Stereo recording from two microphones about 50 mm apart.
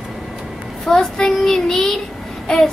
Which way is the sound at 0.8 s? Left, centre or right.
Centre.